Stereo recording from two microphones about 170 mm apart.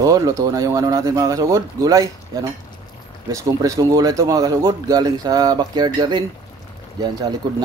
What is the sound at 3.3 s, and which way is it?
A man's voice, 20° right (ahead or behind).